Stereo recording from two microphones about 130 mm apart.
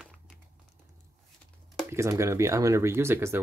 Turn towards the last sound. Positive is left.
turn(degrees=-20)  # may be behind; listen again after turning